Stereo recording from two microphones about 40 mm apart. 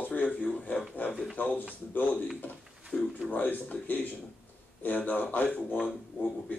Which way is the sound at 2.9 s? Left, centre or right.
Left.